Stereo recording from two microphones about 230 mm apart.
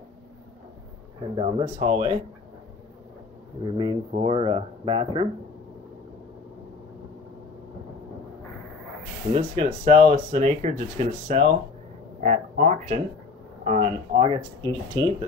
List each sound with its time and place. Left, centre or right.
1.3 s speech: right
3.6 s speech: centre
9.3 s speech: right